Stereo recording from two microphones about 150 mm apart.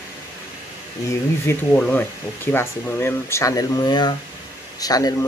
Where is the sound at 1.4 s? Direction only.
10° left (ahead or behind).